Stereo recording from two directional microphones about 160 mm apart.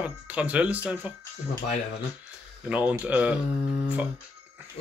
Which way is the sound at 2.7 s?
10° right (ahead or behind).